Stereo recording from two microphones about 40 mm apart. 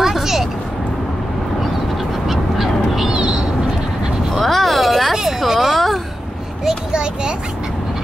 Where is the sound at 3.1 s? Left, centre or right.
Right.